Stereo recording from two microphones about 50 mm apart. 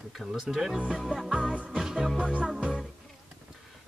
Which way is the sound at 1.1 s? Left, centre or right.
Right.